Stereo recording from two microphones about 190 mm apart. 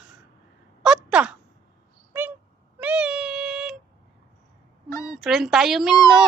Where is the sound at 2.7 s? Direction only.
5° right (ahead or behind).